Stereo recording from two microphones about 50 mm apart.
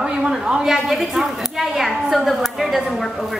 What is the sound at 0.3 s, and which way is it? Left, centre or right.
A woman's voice, centre.